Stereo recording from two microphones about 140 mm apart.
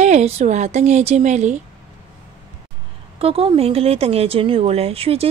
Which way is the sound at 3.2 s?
40° right (ahead or behind).